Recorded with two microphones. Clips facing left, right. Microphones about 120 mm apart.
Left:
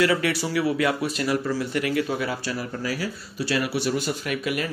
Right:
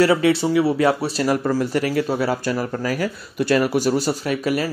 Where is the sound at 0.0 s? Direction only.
30° right (ahead or behind).